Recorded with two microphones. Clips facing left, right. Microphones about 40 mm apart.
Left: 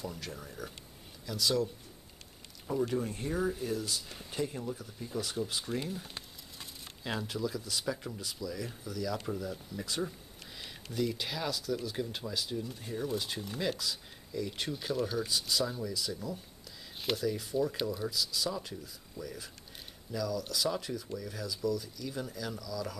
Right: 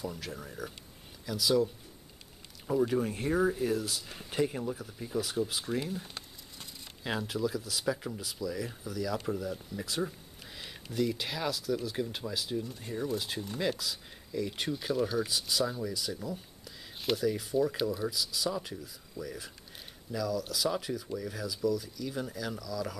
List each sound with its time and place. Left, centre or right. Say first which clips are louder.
0.0 s speech: right 2 dB; centre
2.7 s speech: right 4 dB; centre